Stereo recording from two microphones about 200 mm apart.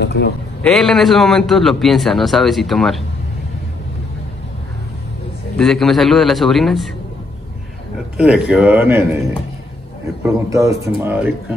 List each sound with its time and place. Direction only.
0.0 s a man's voice: 55° left (ahead or behind)
0.6 s a man's voice: 5° left (ahead or behind)
5.6 s a man's voice: centre (ahead or behind)
8.2 s a man's voice: 5° right (ahead or behind)
10.2 s a man's voice: 15° right (ahead or behind)